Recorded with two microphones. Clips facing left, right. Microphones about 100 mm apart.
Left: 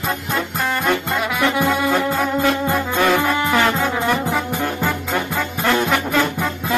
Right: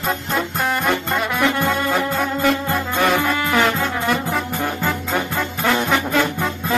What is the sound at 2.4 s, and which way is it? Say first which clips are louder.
Music: right 1 dB; 15° left (ahead or behind).